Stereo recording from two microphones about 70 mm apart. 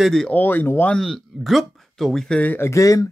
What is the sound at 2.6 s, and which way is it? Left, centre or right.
Speech, left.